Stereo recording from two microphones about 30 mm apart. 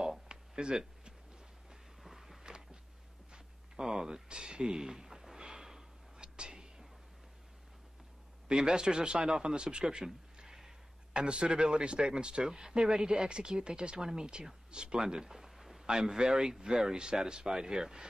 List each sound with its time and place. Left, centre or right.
0.3 s a sound: right
2.0 s a sound: centre
2.4 s a sound: right
3.8 s speech: centre
4.3 s speech: right
5.4 s snort: centre
6.1 s whispering: right
8.5 s speech: right
11.1 s a man's voice: right
12.4 s speech: centre
15.0 s a sound: centre
15.9 s speech: centre
17.5 s speech: centre